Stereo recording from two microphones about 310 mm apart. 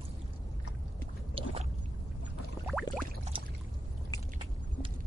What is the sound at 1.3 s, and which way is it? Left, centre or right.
Boat, centre.